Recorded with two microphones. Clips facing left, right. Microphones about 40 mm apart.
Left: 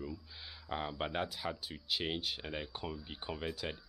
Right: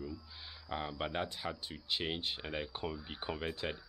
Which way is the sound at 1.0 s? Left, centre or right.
Centre.